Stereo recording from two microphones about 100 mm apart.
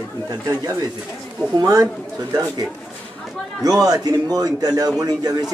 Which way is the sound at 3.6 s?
40° right (ahead or behind).